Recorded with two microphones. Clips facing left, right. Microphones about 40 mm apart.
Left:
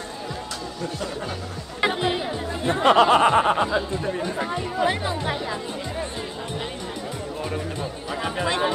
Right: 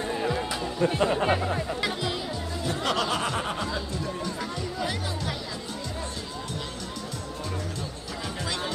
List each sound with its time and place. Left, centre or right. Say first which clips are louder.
0.3 s music: right 3 dB; right
1.8 s speech: left 6 dB; left
8.4 s music: left 9 dB; left